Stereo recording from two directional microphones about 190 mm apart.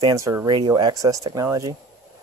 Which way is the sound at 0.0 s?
15° right (ahead or behind).